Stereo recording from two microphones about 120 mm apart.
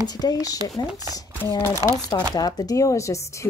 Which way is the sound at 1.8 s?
30° left (ahead or behind).